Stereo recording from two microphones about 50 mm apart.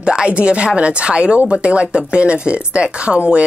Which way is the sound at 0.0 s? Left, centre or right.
Centre.